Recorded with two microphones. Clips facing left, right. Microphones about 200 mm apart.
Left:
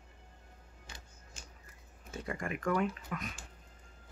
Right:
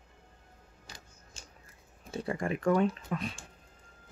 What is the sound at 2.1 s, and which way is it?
Speech, 30° right (ahead or behind).